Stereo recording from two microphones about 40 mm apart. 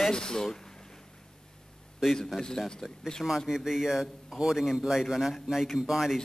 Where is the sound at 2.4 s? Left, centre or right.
Centre.